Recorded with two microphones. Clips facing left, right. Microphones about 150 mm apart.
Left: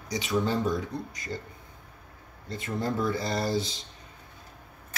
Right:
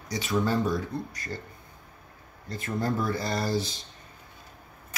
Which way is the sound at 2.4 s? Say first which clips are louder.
Right 1 dB; 20° left (ahead or behind).